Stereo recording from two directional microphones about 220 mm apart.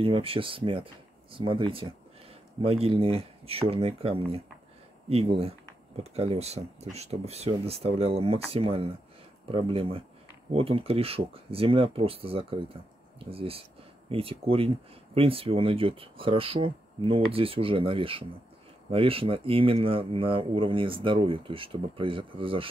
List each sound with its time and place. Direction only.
0.0 s speech: 25° right (ahead or behind)